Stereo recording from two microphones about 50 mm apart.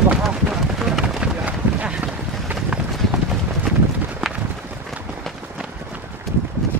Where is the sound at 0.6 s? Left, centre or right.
Centre.